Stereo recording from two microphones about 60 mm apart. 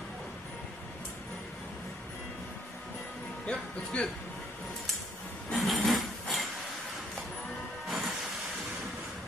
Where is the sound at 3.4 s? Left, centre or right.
Centre.